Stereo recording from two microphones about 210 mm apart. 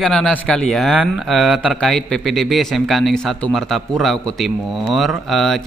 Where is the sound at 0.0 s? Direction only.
5° left (ahead or behind).